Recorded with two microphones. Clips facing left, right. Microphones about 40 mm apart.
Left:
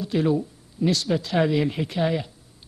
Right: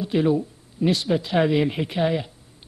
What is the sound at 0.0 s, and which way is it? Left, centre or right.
A man's voice, right.